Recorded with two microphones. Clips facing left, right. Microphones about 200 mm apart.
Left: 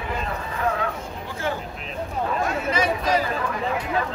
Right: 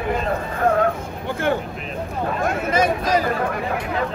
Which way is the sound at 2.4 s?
50° right (ahead or behind).